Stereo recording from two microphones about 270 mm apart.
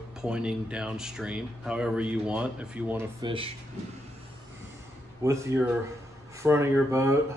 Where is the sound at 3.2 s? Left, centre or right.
Centre.